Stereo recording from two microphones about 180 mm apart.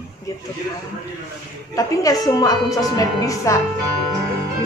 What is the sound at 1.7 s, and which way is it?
A woman's voice, 20° left (ahead or behind).